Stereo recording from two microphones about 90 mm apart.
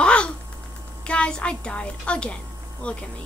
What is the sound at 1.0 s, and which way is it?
A child's voice, 10° left (ahead or behind).